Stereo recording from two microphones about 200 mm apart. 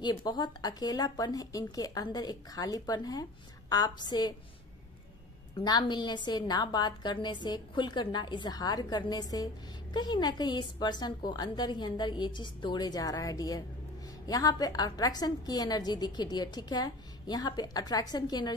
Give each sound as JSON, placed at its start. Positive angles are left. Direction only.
{"t": 0.0, "sound": "a woman's voice", "side_deg": 20}
{"t": 5.6, "sound": "a woman's voice", "side_deg": 20}